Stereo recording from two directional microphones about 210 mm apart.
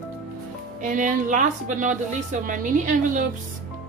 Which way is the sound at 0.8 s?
40° right (ahead or behind).